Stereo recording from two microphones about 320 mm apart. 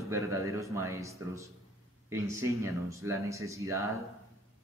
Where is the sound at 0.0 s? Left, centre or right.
Centre.